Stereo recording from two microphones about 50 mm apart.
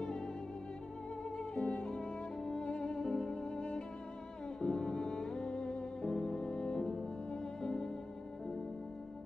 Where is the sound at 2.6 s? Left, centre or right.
Left.